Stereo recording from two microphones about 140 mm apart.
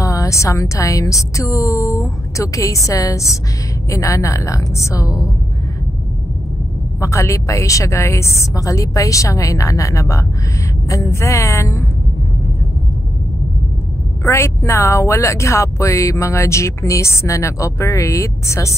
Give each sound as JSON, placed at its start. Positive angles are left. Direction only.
{"t": 0.0, "sound": "speech", "side_deg": 25}
{"t": 7.0, "sound": "speech", "side_deg": 20}
{"t": 14.2, "sound": "speech", "side_deg": 20}